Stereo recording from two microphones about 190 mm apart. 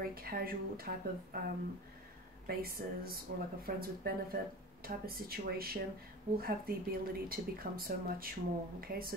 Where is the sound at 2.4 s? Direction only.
50° right (ahead or behind).